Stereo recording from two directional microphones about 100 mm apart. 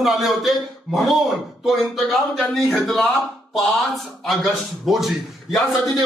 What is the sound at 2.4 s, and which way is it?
Speech, centre (ahead or behind).